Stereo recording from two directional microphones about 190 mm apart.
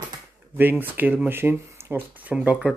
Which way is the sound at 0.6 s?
10° right (ahead or behind).